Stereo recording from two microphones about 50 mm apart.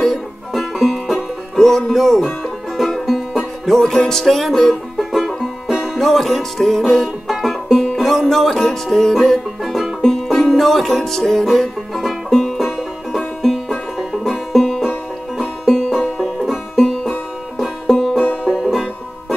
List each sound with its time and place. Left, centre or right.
0.0 s music: centre
18.2 s music: left
18.5 s music: centre